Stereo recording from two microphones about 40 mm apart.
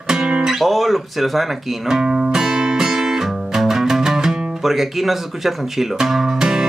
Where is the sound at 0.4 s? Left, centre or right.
Centre.